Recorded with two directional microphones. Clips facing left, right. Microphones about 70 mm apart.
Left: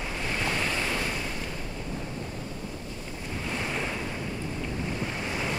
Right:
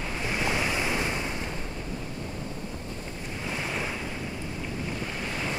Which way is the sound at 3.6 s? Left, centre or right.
Centre.